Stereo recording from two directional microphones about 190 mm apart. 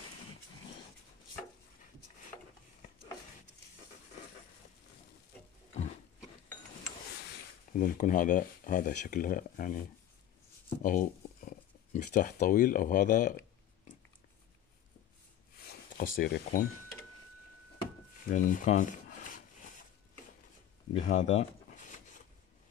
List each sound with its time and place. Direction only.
7.7 s speech: 45° left (ahead or behind)
10.8 s speech: 45° left (ahead or behind)
15.6 s speech: 50° left (ahead or behind)
18.3 s rub: 45° left (ahead or behind)
20.9 s a sound: 40° left (ahead or behind)